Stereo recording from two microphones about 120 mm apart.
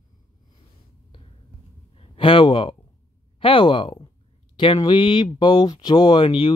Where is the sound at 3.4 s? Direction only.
45° left (ahead or behind).